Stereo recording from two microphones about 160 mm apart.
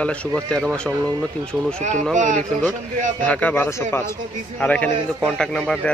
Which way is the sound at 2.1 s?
50° right (ahead or behind).